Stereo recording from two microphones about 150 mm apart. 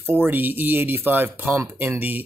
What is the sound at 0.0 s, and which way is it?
Speech, 15° right (ahead or behind).